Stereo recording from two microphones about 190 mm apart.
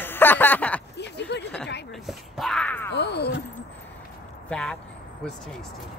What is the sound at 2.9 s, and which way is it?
Speech, 60° left (ahead or behind).